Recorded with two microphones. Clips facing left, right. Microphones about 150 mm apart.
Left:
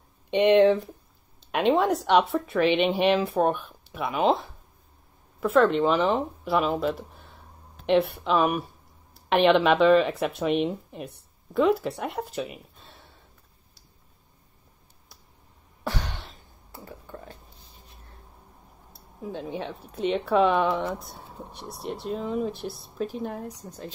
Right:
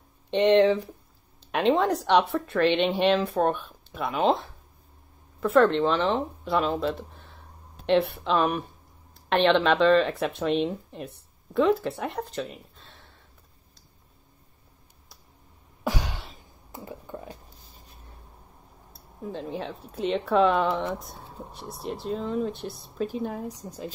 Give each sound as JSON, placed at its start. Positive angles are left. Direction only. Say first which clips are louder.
{"t": 0.3, "sound": "speech", "louder": "left 1 dB", "side_deg": 5}
{"t": 15.8, "sound": "cough", "louder": "right 2 dB", "side_deg": -10}
{"t": 16.7, "sound": "a sound", "louder": "right 3 dB", "side_deg": -15}
{"t": 18.9, "sound": "speech", "louder": "even", "side_deg": 0}